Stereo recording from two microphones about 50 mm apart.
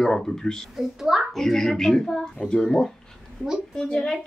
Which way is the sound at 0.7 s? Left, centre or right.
Centre.